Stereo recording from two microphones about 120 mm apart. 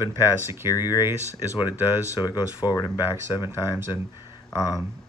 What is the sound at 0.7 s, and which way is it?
Speech, 35° left (ahead or behind).